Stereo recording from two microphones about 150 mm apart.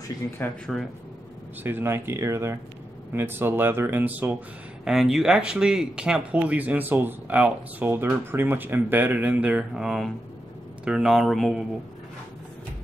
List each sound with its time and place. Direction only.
0.7 s speech: 5° left (ahead or behind)
1.6 s speech: 15° right (ahead or behind)